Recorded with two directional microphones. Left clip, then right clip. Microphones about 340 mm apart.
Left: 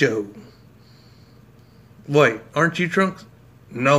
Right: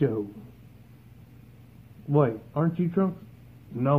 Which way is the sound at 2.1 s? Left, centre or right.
Left.